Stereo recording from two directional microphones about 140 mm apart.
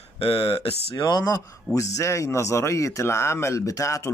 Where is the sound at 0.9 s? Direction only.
30° left (ahead or behind).